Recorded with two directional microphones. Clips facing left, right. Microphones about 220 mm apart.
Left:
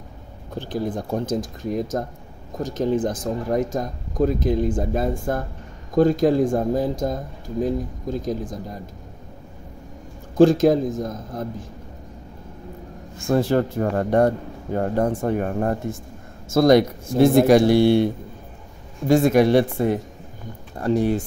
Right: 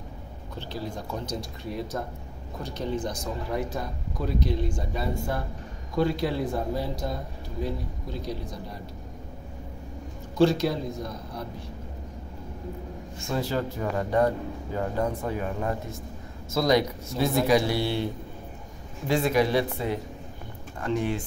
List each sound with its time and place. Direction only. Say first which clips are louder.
0.6 s a man's voice: left 9 dB; 50° left (ahead or behind)
10.3 s a man's voice: left 8 dB; 50° left (ahead or behind)
13.3 s a man's voice: left 9 dB; 55° left (ahead or behind)
19.0 s a man's voice: left 8 dB; 45° left (ahead or behind)
20.7 s speech: left 7 dB; 35° left (ahead or behind)